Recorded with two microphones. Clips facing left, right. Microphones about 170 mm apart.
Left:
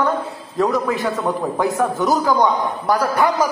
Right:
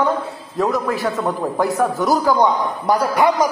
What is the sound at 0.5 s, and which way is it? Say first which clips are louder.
A man's voice: left 1 dB; centre (ahead or behind).